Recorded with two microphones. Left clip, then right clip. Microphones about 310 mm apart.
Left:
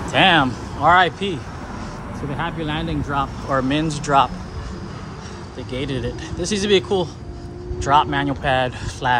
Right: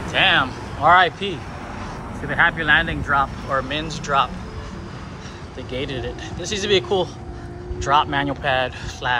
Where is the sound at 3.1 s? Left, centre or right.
Left.